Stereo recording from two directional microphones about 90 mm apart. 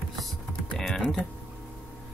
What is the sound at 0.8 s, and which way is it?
Speech, 5° left (ahead or behind).